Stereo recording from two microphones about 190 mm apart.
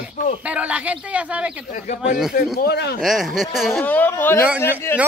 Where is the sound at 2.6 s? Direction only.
60° left (ahead or behind).